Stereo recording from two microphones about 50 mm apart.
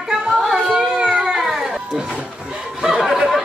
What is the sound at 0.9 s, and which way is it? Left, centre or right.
Cat, centre.